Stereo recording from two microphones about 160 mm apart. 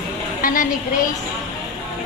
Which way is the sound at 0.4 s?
60° left (ahead or behind).